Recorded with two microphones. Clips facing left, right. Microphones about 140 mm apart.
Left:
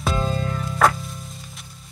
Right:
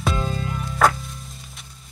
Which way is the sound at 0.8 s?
Centre (ahead or behind).